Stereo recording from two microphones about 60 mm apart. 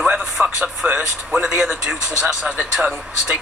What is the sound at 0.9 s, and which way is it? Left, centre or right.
Speech, centre.